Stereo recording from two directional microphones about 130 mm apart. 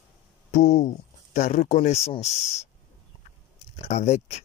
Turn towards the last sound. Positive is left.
turn(degrees=55)  # may be behind; listen again after turning